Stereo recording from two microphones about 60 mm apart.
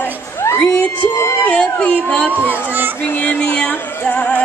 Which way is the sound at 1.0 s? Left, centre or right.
Left.